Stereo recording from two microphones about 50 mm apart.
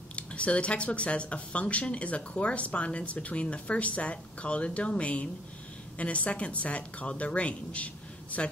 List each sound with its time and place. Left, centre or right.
0.1 s speech: left